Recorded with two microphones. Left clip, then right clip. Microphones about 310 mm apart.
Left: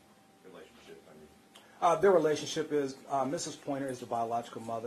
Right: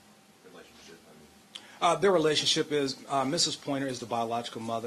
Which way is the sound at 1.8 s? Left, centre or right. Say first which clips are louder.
Right 1 dB; right.